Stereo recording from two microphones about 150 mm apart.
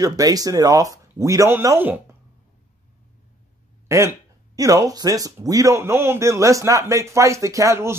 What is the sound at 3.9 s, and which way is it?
Speech, 20° right (ahead or behind).